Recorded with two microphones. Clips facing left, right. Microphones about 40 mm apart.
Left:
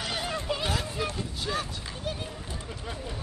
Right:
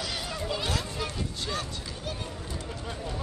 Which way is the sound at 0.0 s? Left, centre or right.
Left.